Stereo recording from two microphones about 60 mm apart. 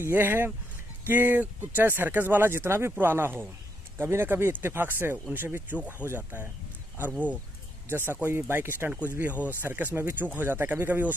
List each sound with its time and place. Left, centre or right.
0.0 s speech: right
7.0 s speech: right
7.9 s speech: right